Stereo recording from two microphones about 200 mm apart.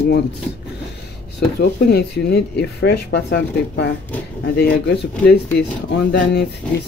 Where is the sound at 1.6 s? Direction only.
55° left (ahead or behind).